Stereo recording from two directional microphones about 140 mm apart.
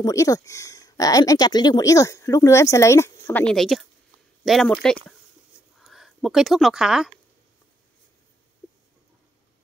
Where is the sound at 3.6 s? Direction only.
Centre (ahead or behind).